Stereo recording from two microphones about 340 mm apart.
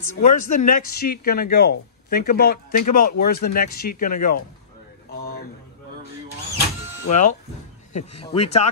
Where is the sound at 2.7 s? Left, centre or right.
Left.